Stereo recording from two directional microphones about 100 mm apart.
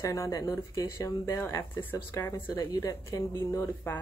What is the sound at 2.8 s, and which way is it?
A woman's voice, 30° left (ahead or behind).